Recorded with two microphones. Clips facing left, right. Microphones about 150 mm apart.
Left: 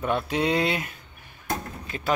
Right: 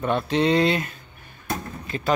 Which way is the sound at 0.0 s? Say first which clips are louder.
Right 3 dB; 5° left (ahead or behind).